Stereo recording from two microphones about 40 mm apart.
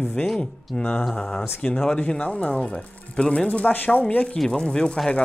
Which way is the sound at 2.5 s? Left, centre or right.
Centre.